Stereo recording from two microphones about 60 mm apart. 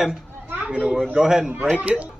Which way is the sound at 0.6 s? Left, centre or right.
Right.